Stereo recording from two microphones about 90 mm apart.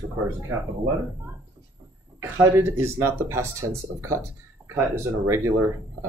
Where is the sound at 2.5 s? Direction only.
30° right (ahead or behind).